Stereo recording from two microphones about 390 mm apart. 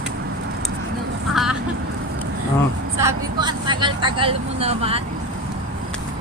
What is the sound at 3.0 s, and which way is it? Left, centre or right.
Speech, centre.